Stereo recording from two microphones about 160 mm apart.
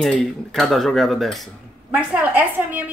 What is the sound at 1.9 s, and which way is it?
Speech, 10° right (ahead or behind).